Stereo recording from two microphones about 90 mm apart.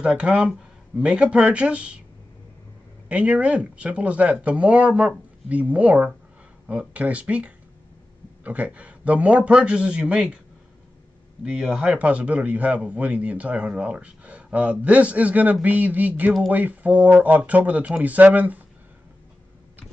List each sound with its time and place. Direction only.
0.0 s a man's voice: 5° right (ahead or behind)
3.1 s a man's voice: 15° right (ahead or behind)
11.4 s a man's voice: 10° right (ahead or behind)